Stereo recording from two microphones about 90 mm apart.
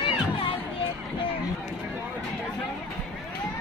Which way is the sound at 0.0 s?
80° left.